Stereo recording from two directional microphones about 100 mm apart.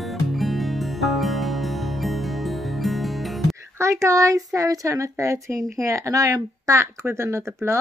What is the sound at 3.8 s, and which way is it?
A woman's voice, 30° right (ahead or behind).